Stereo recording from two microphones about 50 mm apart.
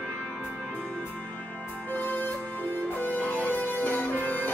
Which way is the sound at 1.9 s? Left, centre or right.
Left.